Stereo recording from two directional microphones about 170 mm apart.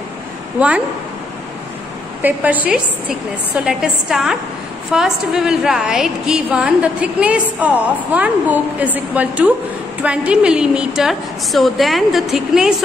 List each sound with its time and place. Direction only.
0.6 s a woman's voice: 5° right (ahead or behind)
2.2 s a woman's voice: 10° right (ahead or behind)